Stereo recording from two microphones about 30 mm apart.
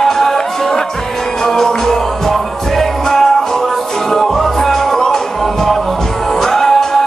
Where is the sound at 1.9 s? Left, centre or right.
Centre.